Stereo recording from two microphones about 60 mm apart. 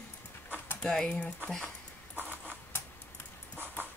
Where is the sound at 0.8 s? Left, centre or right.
Centre.